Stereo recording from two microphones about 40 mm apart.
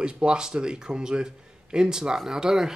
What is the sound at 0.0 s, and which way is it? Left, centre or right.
A man's voice, right.